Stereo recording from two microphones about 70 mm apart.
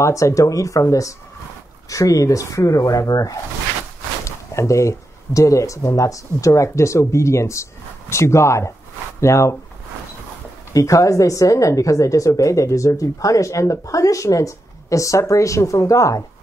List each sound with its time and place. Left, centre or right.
0.0 s a woman's voice: left
4.2 s a woman's voice: left
10.7 s a woman's voice: left